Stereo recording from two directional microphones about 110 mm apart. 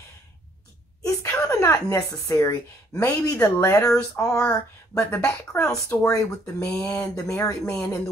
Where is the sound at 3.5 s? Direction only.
25° left (ahead or behind).